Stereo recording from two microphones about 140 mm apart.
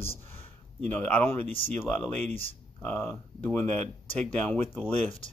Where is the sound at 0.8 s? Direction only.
10° left (ahead or behind).